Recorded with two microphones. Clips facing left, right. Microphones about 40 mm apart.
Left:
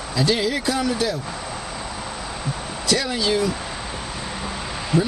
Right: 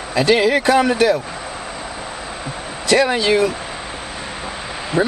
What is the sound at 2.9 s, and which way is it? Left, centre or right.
Speech, right.